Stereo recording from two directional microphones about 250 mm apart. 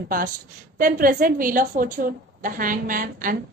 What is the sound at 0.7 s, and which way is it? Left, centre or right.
A woman's voice, right.